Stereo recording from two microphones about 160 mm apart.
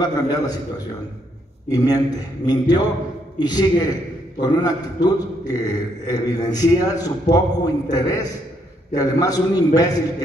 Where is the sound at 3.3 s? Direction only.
25° left (ahead or behind).